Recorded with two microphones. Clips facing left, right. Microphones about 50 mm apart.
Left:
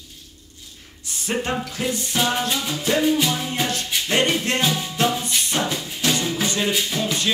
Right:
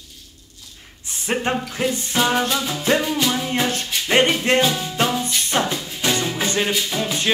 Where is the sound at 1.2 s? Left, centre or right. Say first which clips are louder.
Right 2 dB; right.